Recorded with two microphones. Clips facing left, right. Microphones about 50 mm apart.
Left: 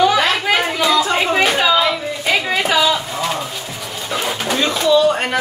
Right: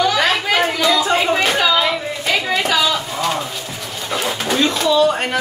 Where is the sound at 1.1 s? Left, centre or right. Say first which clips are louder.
Even; centre.